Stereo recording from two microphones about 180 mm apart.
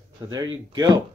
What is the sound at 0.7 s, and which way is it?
Speech, 20° right (ahead or behind).